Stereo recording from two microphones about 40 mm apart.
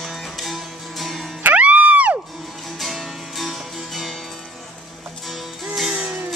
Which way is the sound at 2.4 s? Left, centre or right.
Centre.